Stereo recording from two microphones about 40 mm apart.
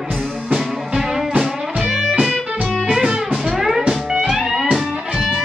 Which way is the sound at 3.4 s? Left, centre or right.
Centre.